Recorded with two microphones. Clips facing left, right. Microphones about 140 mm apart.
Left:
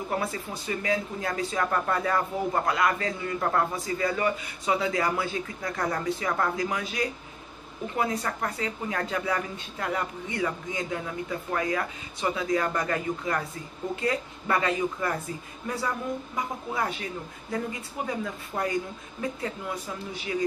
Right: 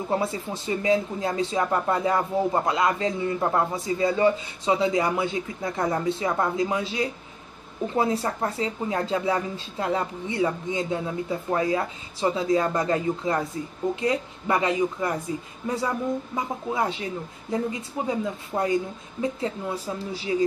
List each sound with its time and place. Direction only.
0.1 s speech: 25° right (ahead or behind)